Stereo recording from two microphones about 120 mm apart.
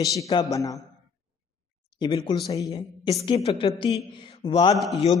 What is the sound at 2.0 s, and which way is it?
Speech, 35° left (ahead or behind).